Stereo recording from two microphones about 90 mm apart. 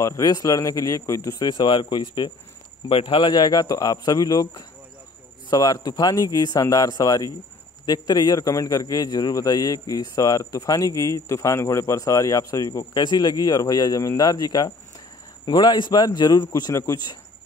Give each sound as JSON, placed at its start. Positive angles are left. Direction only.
{"t": 0.0, "sound": "speech", "side_deg": 40}
{"t": 2.9, "sound": "a man's voice", "side_deg": 80}
{"t": 12.9, "sound": "speech", "side_deg": 55}